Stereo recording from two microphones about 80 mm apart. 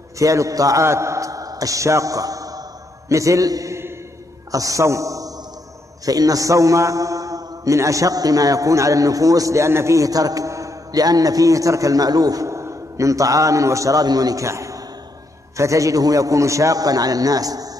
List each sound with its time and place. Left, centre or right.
0.2 s a man's voice: right